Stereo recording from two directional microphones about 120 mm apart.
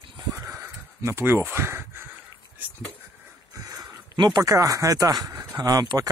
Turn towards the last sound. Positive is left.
turn(degrees=-30)  # may be behind; listen again after turning